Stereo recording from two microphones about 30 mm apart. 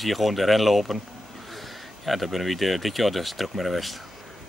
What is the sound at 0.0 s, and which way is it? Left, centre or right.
Speech, centre.